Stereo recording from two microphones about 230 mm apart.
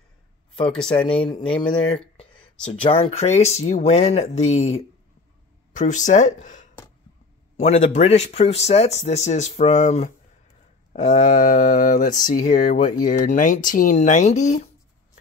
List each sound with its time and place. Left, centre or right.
0.7 s speech: centre
0.9 s speech: left
2.1 s a sound: left
2.7 s speech: left